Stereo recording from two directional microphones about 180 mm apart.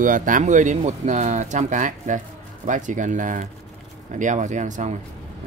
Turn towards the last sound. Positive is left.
turn(degrees=-40)  # may be behind; listen again after turning